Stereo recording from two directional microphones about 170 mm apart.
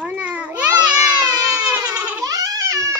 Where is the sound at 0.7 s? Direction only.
25° right (ahead or behind).